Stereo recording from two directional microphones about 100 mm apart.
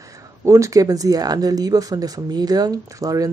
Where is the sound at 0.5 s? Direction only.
35° right (ahead or behind).